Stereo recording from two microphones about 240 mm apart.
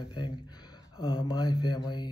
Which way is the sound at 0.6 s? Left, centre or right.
Centre.